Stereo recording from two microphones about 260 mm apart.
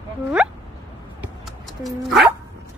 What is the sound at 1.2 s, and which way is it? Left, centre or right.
Dog, centre.